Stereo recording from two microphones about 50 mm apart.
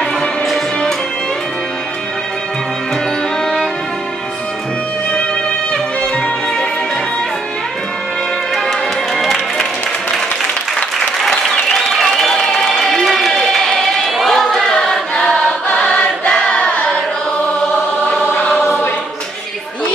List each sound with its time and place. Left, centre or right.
8.6 s music: centre
11.5 s applause: centre
14.4 s choir: centre
18.6 s choir: left